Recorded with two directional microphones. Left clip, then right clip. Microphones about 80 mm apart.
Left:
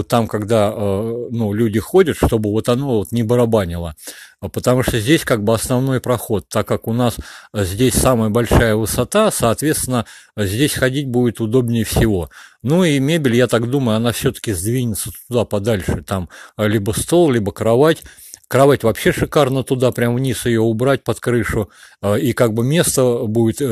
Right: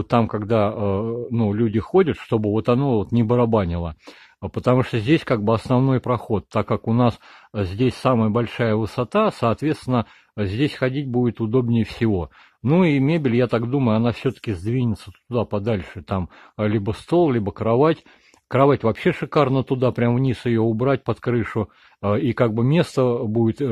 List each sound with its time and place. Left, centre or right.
0.3 s speech: left
7.5 s speech: left